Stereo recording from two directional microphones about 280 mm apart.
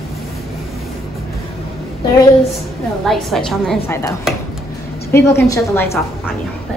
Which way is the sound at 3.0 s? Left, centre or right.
Centre.